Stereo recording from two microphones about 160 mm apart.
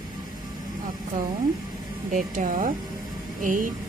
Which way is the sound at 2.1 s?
50° right (ahead or behind).